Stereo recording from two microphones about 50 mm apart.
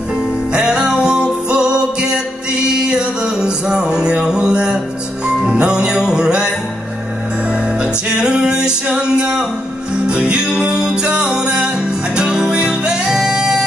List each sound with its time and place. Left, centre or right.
0.5 s music: centre
7.8 s music: centre